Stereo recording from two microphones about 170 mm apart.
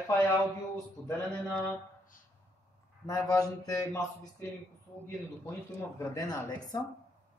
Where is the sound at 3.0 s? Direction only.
20° left (ahead or behind).